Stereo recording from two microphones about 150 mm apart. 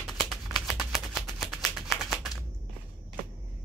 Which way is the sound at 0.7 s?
Centre (ahead or behind).